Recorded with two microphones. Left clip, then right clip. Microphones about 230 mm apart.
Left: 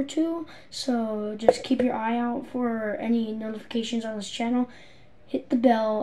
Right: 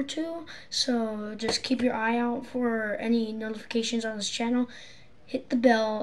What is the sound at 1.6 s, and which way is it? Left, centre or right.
Speech, right.